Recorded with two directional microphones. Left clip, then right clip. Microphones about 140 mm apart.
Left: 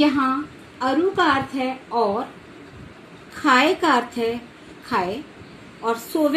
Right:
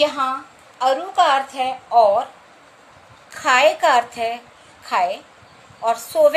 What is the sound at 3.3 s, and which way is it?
A woman's voice, 40° right (ahead or behind).